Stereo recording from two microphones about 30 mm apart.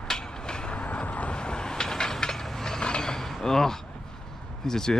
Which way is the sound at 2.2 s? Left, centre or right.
Centre.